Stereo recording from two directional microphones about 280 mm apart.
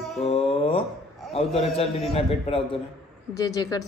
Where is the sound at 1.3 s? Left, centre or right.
Left.